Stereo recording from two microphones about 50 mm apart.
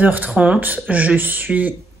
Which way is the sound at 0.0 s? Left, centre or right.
Right.